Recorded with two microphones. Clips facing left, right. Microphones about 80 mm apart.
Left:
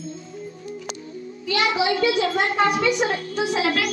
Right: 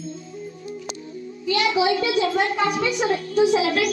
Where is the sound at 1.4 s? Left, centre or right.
Left.